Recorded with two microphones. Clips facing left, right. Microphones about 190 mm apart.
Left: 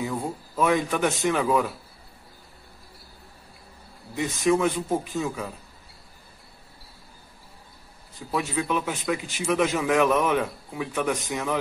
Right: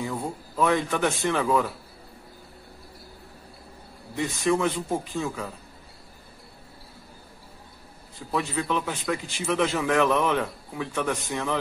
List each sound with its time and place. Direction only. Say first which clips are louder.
0.0 s a man's voice: left 1 dB; 15° left (ahead or behind)
4.2 s speech: left 2 dB; 15° left (ahead or behind)
8.2 s speech: left 1 dB; 20° left (ahead or behind)